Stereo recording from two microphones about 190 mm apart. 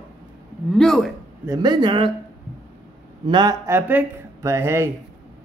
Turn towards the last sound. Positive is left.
turn(degrees=-15)  # may be behind; listen again after turning